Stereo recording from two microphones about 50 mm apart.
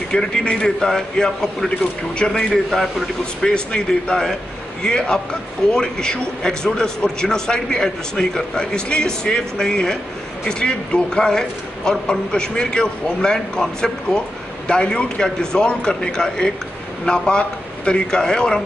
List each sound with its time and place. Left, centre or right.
0.1 s a man's voice: centre
2.5 s a man's voice: centre
3.4 s a man's voice: centre